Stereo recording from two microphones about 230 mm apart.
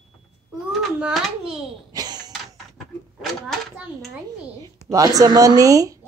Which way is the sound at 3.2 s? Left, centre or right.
Centre.